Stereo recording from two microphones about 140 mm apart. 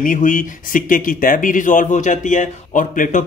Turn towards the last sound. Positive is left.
turn(degrees=70)  # may be behind; listen again after turning